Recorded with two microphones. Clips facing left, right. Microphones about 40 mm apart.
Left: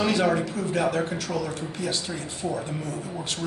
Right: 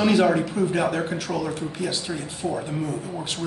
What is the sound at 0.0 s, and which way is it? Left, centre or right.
A man's voice, centre.